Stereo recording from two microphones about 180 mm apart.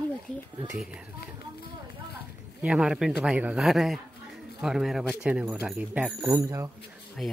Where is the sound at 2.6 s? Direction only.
5° right (ahead or behind).